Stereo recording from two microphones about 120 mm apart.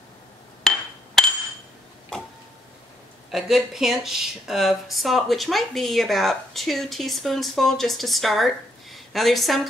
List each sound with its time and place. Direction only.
0.7 s hammer: 5° left (ahead or behind)
3.3 s speech: centre (ahead or behind)